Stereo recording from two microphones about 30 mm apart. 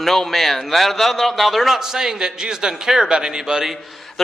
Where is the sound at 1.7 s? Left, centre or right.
Centre.